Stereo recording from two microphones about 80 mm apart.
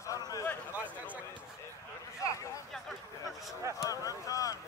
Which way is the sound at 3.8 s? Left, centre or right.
Left.